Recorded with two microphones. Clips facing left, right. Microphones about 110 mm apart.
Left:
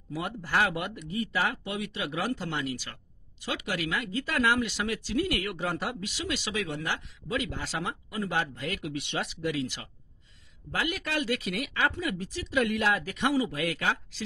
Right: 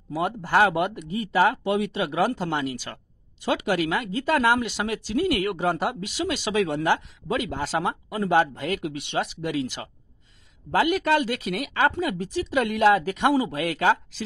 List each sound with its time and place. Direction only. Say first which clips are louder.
0.1 s speech: right 7 dB; 30° right (ahead or behind)
5.7 s speech: right 7 dB; 55° right (ahead or behind)
7.3 s speech: right 6 dB; 55° right (ahead or behind)
10.7 s speech: right 11 dB; 60° right (ahead or behind)